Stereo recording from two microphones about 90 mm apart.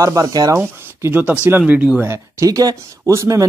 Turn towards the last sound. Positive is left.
turn(degrees=-35)  # may be behind; listen again after turning